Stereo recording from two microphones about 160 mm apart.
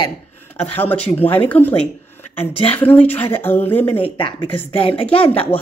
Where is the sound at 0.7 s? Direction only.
10° left (ahead or behind).